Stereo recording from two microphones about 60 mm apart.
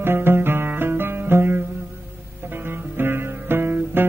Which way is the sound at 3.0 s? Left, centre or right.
Right.